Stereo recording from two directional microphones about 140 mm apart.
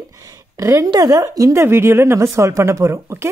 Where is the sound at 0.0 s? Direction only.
25° right (ahead or behind).